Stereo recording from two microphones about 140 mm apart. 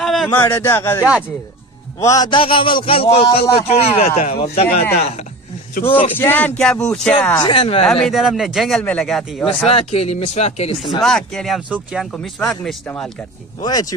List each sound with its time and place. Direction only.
0.0 s a sound: centre (ahead or behind)
0.4 s a man's voice: 15° left (ahead or behind)
2.3 s speech: 40° left (ahead or behind)
6.1 s speech: 15° left (ahead or behind)
7.4 s speech: 40° left (ahead or behind)
7.8 s speech: 5° left (ahead or behind)
9.7 s speech: 45° left (ahead or behind)
11.0 s speech: 5° left (ahead or behind)
13.6 s a man's voice: 30° left (ahead or behind)